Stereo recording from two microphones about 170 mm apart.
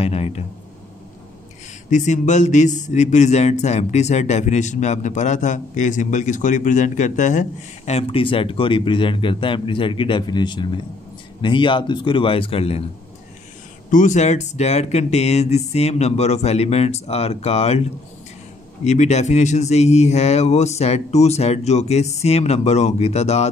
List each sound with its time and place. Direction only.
0.0 s a sound: 35° left (ahead or behind)
1.9 s a man's voice: 45° left (ahead or behind)
13.8 s speech: 50° left (ahead or behind)
18.9 s speech: 40° left (ahead or behind)